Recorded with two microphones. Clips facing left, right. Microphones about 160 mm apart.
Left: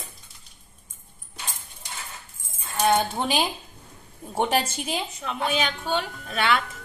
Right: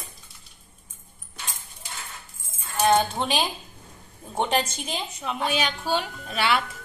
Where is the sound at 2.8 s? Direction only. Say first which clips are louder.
Right 1 dB; 5° left (ahead or behind).